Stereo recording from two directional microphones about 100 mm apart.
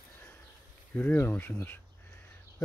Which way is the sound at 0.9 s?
15° left (ahead or behind).